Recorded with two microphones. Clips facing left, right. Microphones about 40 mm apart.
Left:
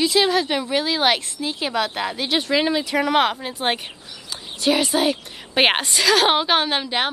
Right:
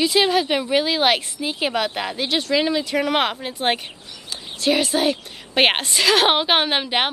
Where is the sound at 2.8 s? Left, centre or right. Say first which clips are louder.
Left 2 dB; centre.